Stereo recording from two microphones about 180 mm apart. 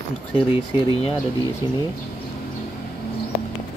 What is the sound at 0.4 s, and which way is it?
Speech, 30° left (ahead or behind).